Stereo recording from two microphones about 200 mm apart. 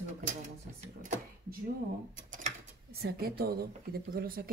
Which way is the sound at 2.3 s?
45° right (ahead or behind).